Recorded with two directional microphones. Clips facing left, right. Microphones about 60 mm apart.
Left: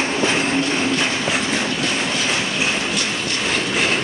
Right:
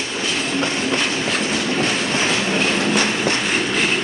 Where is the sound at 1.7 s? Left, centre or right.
Right.